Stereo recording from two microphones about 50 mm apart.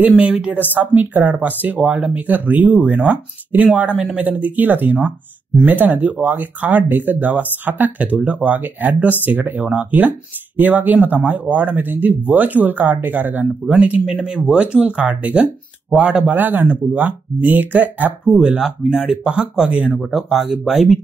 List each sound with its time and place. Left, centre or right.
0.2 s speech: right
18.6 s speech: centre
19.2 s speech: centre